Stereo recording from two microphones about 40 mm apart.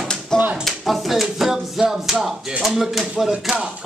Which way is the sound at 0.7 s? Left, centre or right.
Centre.